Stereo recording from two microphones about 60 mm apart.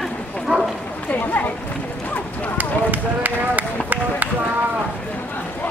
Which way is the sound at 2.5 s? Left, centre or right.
Right.